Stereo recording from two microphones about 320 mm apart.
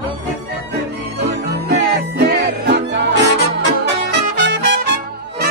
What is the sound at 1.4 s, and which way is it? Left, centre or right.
Music, right.